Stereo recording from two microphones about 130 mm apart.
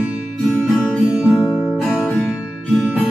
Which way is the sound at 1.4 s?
Centre (ahead or behind).